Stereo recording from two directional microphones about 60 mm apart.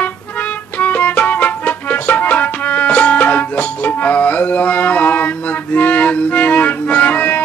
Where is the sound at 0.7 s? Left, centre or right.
Left.